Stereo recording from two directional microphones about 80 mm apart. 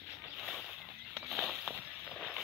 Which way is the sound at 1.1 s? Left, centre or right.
Centre.